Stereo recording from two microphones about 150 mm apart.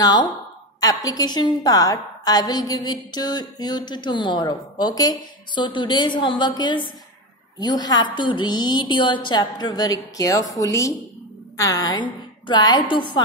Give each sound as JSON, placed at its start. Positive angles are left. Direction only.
{"t": 0.0, "sound": "a woman's voice", "side_deg": 25}